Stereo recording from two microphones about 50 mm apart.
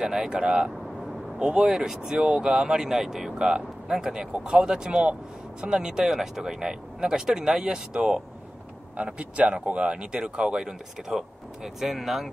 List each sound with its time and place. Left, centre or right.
0.0 s speech: centre